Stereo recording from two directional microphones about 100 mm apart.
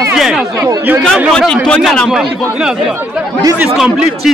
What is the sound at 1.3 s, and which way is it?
Speech, 5° left (ahead or behind).